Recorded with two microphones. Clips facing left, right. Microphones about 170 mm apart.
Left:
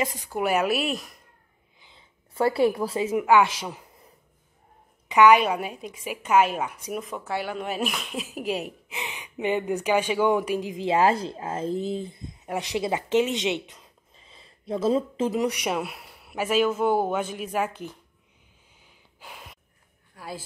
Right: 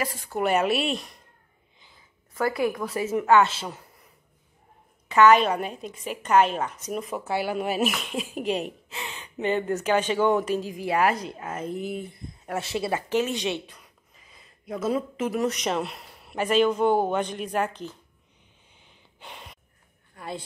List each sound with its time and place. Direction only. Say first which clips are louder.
0.0 s a woman's voice: even; 15° left (ahead or behind)
1.8 s a sound: left 2 dB; 25° left (ahead or behind)
3.0 s a man's voice: even; 15° left (ahead or behind)
5.0 s a woman's voice: even; 15° left (ahead or behind)
8.9 s speech: left 1 dB; 15° left (ahead or behind)
15.4 s a man's voice: even; 10° left (ahead or behind)
18.8 s gasp: right 1 dB; 5° left (ahead or behind)
20.2 s a woman's voice: right 2 dB; 5° left (ahead or behind)